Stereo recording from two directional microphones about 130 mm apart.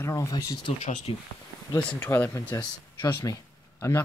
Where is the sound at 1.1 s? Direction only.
45° left (ahead or behind).